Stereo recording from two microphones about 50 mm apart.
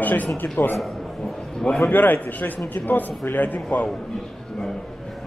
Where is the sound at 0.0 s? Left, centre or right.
Left.